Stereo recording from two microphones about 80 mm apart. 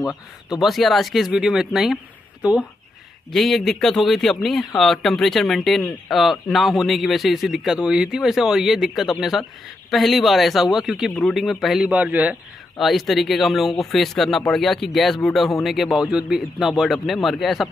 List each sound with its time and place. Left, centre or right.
0.5 s speech: centre
2.4 s speech: centre
3.3 s speech: centre
11.9 s speech: centre
12.7 s speech: centre